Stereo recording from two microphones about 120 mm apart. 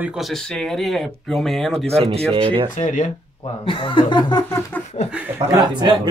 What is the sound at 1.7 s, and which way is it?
Speech, 55° right (ahead or behind).